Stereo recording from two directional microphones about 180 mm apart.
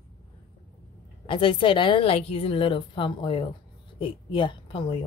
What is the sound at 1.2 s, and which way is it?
A woman's voice, 30° left (ahead or behind).